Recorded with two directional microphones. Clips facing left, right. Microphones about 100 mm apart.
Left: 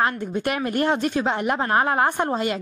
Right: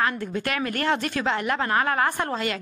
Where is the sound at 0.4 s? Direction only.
20° left (ahead or behind).